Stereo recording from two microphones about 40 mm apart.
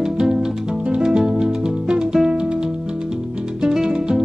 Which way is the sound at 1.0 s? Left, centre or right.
Right.